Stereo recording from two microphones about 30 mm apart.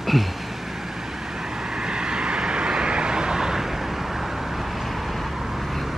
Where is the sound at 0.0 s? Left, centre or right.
Centre.